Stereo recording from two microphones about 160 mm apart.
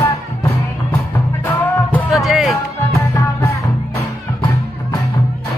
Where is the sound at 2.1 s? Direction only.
Centre (ahead or behind).